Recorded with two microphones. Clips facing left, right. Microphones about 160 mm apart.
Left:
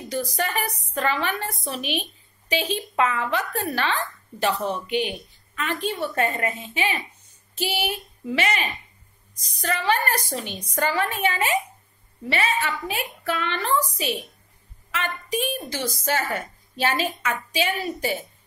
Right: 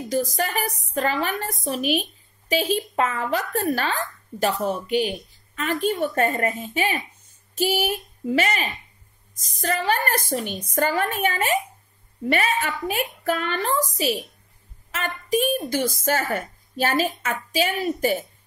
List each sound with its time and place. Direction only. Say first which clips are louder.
0.1 s a woman's voice: right 2 dB; 40° right (ahead or behind)